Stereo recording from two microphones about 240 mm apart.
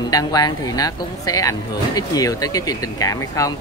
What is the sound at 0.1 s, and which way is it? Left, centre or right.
Speech, centre.